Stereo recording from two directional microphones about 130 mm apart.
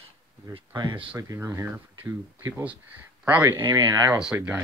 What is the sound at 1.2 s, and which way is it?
Speech, 25° right (ahead or behind).